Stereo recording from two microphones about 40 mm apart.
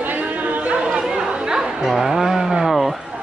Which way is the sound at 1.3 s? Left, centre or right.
Right.